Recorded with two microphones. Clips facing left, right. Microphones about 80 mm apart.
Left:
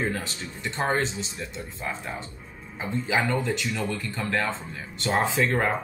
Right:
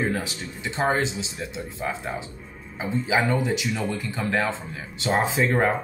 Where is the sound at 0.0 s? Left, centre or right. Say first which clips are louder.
Right 3 dB; centre.